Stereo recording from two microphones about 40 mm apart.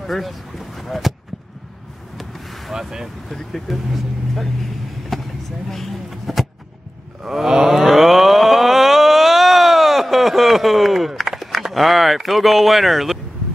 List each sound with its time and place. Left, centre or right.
0.0 s boat: centre
2.1 s boat: centre
2.7 s speech: centre
3.3 s speech: centre
5.1 s vehicle: centre
5.7 s speech: centre
7.2 s a sound: centre